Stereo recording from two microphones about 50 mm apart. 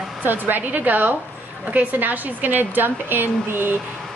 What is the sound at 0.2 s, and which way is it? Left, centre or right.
A woman's voice, right.